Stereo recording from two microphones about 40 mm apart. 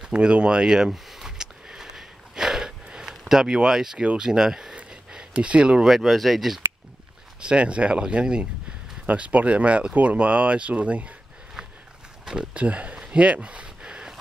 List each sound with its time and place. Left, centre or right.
0.0 s speech: right
1.7 s a sound: centre
4.2 s speech: centre
5.3 s speech: right
5.9 s speech: centre
7.3 s speech: right
9.1 s speech: right
12.5 s speech: right
13.8 s a sound: centre